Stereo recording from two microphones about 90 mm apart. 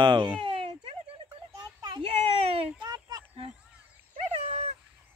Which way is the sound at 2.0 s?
90° right.